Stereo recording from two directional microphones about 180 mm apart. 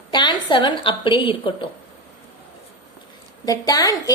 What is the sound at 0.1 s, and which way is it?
A child's voice, 25° left (ahead or behind).